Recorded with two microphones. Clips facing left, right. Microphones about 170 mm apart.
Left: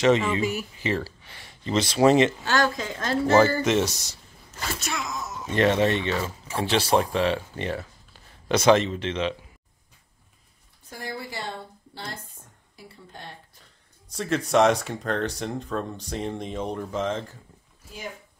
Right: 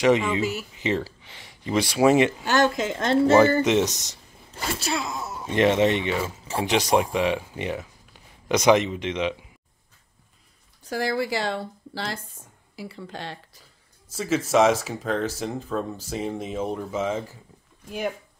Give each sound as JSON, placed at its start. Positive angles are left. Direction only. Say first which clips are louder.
{"t": 0.0, "sound": "speech", "louder": "right 1 dB", "side_deg": -15}
{"t": 0.4, "sound": "speech", "louder": "even", "side_deg": 15}
{"t": 0.7, "sound": "speech", "louder": "right 2 dB", "side_deg": -20}
{"t": 4.6, "sound": "speech", "louder": "right 4 dB", "side_deg": -30}
{"t": 5.5, "sound": "speech", "louder": "right 2 dB", "side_deg": -20}
{"t": 10.8, "sound": "a woman's voice", "louder": "right 10 dB", "side_deg": -90}
{"t": 13.6, "sound": "speech", "louder": "right 1 dB", "side_deg": -5}